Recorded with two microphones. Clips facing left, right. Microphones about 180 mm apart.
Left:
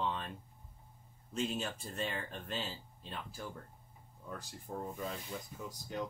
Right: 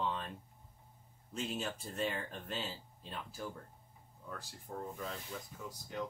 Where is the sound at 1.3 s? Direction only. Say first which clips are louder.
Left 2 dB; centre (ahead or behind).